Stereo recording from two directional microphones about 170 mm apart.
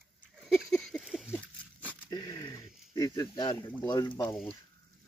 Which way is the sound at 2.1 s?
25° left (ahead or behind).